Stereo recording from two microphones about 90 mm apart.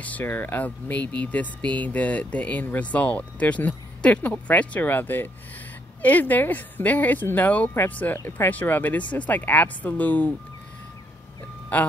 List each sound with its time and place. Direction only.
0.0 s speech: 20° left (ahead or behind)
11.7 s speech: 15° left (ahead or behind)